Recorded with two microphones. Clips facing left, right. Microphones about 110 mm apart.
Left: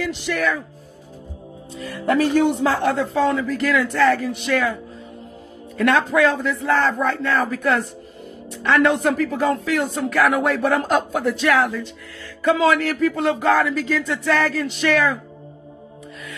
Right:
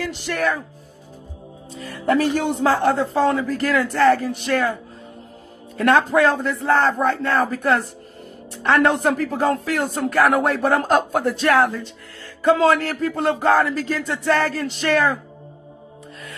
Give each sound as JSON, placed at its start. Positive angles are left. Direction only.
{"t": 0.3, "sound": "speech", "side_deg": -40}
{"t": 1.8, "sound": "speech", "side_deg": -35}
{"t": 5.8, "sound": "speech", "side_deg": -35}